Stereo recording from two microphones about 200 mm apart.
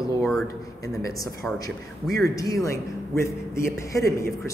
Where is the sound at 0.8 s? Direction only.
15° left (ahead or behind).